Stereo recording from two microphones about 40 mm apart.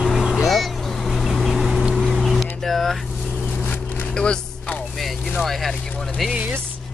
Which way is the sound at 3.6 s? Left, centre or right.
Left.